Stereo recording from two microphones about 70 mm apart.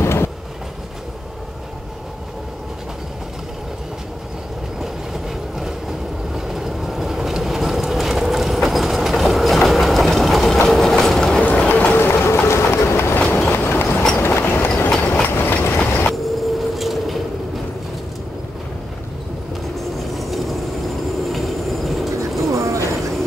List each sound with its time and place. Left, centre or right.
0.0 s train: left
5.6 s train: centre
11.4 s run: centre; by 13.2 s left
13.3 s train: left
15.0 s train: centre
15.2 s train: left
16.1 s vehicle: centre
20.2 s vehicle: centre
21.3 s train: centre
22.5 s vehicle: right